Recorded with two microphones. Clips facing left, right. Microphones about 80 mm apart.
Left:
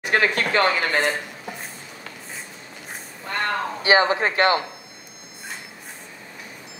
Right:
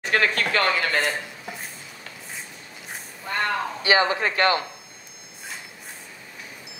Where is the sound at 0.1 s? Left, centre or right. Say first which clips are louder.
Left 2 dB; left.